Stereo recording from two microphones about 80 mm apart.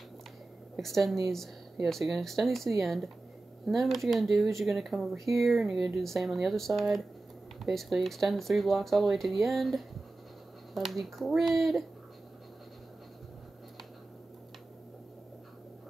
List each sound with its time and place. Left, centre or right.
0.7 s speech: centre